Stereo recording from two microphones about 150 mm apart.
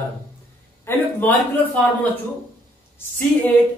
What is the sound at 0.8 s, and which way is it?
Speech, 10° left (ahead or behind).